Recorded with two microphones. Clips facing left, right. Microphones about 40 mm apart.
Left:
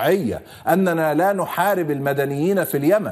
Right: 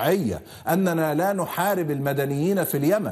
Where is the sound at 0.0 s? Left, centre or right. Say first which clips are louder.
Left 4 dB; centre.